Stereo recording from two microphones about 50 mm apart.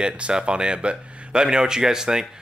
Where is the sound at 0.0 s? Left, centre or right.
Centre.